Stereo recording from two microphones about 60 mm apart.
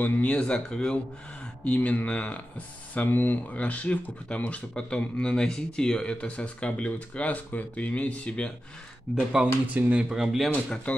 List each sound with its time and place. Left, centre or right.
0.0 s speech: left
0.3 s speech: centre
9.1 s speech: centre
10.0 s speech: centre
10.9 s speech: left